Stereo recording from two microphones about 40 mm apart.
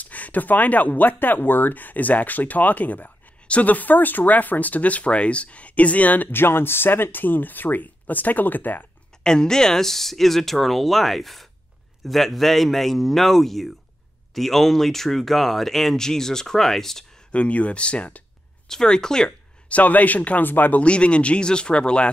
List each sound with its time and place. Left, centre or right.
0.0 s speech: left
3.7 s speech: left
6.3 s speech: left
9.2 s speech: centre
17.3 s speech: left
18.7 s speech: centre
19.7 s speech: left
20.8 s speech: left